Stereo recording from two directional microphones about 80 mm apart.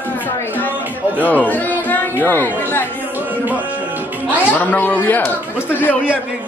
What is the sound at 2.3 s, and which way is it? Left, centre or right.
Speech, left.